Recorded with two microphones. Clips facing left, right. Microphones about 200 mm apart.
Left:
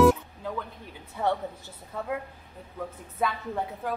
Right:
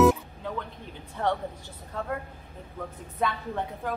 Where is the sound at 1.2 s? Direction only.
5° left (ahead or behind).